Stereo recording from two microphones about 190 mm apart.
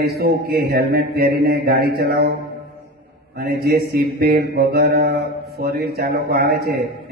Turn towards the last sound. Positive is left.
turn(degrees=-55)  # may be behind; listen again after turning